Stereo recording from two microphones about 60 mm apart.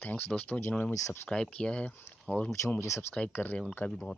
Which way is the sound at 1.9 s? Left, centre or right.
Left.